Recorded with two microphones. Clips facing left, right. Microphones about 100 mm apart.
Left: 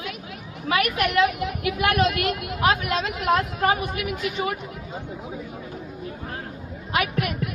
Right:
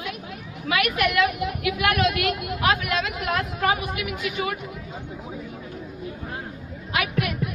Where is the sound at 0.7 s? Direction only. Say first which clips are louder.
Left 1 dB; 35° left (ahead or behind).